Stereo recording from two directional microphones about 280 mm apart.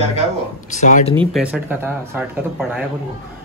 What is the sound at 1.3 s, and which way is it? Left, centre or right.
Speech, centre.